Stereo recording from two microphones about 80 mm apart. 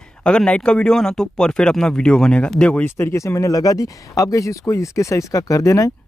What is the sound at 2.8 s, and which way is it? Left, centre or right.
Speech, left.